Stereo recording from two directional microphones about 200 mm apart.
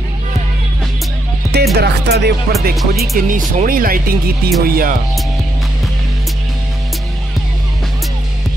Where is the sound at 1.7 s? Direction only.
55° right (ahead or behind).